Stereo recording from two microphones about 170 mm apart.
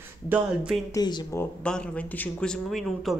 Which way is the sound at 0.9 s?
25° left (ahead or behind).